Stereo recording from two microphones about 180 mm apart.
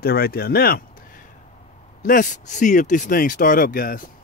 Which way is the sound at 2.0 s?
45° left (ahead or behind).